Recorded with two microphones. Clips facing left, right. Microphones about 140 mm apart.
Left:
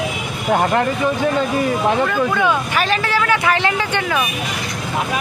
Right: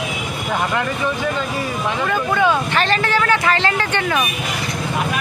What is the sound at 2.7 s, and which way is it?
Speech, 10° left (ahead or behind).